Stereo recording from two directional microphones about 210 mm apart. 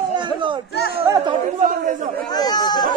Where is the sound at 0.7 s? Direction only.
50° left (ahead or behind).